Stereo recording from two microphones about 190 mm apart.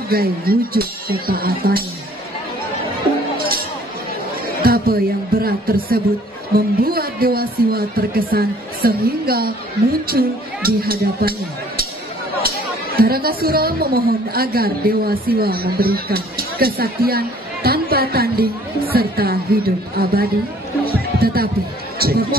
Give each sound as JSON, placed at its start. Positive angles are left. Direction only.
{"t": 0.1, "sound": "a woman's voice", "side_deg": -50}
{"t": 3.3, "sound": "music", "side_deg": -50}
{"t": 4.6, "sound": "a woman's voice", "side_deg": -50}
{"t": 20.8, "sound": "music", "side_deg": -50}
{"t": 21.9, "sound": "speech", "side_deg": -55}